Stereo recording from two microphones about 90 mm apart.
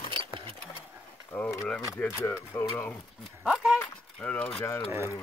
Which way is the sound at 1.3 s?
15° left (ahead or behind).